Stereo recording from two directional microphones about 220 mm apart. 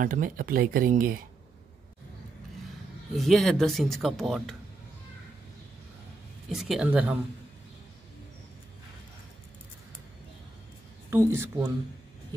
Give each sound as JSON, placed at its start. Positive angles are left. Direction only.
{"t": 0.0, "sound": "speech", "side_deg": -40}
{"t": 3.2, "sound": "speech", "side_deg": 0}
{"t": 6.5, "sound": "speech", "side_deg": 0}
{"t": 11.1, "sound": "speech", "side_deg": -10}